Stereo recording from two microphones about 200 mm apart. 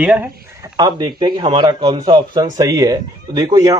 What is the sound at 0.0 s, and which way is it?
Speech, 5° right (ahead or behind).